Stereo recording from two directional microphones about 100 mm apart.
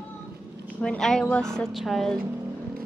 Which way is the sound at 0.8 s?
5° left (ahead or behind).